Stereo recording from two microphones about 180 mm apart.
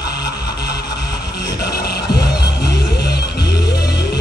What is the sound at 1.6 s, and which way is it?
Music, 60° left (ahead or behind).